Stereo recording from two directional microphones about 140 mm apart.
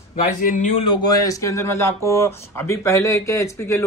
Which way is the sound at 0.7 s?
35° left (ahead or behind).